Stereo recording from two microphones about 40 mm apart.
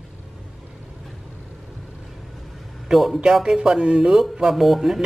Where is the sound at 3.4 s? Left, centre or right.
Centre.